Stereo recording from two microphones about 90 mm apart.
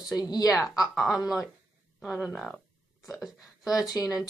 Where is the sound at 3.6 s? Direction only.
45° left (ahead or behind).